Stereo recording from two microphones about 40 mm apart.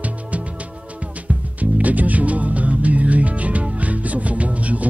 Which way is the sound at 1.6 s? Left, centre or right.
Right.